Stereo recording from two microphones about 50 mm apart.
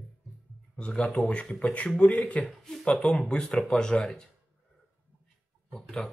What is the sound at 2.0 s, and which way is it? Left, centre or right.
Speech, left.